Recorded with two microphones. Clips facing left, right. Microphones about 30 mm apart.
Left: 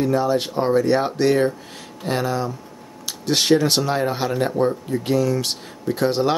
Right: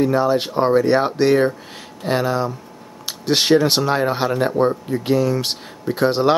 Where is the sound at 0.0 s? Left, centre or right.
Centre.